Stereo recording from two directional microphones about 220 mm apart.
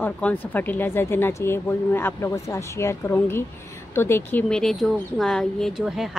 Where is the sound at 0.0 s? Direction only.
10° left (ahead or behind).